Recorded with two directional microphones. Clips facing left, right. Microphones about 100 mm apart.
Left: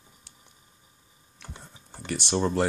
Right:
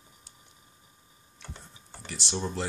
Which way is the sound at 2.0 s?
60° left (ahead or behind).